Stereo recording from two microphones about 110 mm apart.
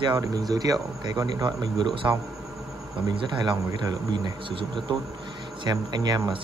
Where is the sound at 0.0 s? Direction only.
40° right (ahead or behind).